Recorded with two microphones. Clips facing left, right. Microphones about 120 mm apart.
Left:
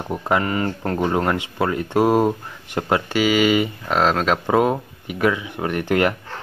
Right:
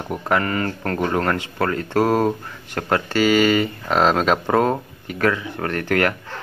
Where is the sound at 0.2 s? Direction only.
20° left (ahead or behind).